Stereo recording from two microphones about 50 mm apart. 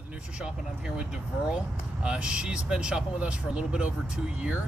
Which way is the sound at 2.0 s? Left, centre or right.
Centre.